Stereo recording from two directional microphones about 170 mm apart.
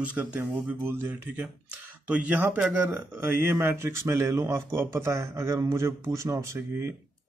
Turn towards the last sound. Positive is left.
turn(degrees=-15)  # may be behind; listen again after turning